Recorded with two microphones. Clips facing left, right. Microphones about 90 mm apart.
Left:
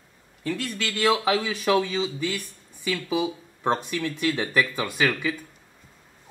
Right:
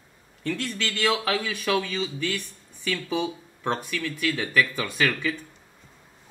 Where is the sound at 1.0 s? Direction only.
25° left (ahead or behind).